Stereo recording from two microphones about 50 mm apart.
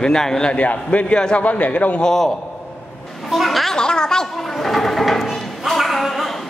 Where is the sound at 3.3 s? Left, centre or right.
Centre.